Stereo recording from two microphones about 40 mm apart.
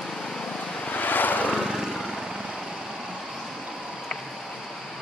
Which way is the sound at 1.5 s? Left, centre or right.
Centre.